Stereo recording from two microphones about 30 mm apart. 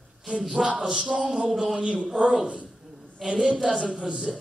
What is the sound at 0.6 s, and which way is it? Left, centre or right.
A man's voice, right.